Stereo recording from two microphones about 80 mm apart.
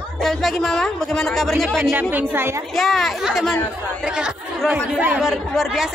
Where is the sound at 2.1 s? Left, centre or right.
Right.